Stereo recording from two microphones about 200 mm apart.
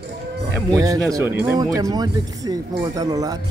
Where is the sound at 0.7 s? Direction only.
15° right (ahead or behind).